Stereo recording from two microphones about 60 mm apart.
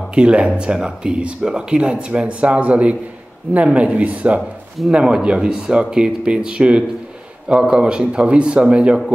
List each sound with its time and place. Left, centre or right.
0.1 s a man's voice: centre